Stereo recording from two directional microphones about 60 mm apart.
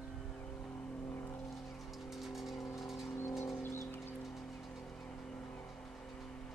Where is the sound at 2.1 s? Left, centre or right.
Centre.